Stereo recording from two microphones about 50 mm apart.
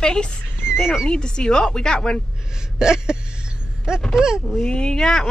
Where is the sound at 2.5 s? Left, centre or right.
Centre.